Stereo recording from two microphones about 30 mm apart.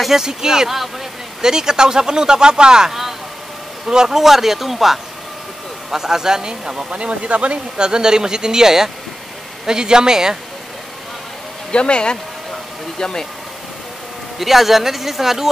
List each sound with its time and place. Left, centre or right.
0.1 s speech: right
2.9 s vehicle: centre
3.8 s speech: right
4.2 s speech: centre
5.9 s speech: centre
6.9 s speech: right
7.7 s speech: right
11.7 s speech: left
13.0 s speech: centre
14.4 s speech: centre